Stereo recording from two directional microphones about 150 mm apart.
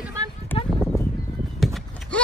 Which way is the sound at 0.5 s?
15° left (ahead or behind).